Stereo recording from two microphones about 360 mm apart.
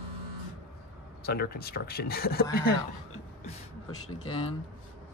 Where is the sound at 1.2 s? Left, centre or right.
Left.